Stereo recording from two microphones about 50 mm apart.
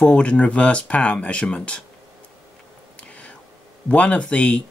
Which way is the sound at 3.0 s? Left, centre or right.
Left.